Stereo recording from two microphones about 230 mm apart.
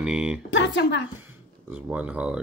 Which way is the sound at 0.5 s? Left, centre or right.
Left.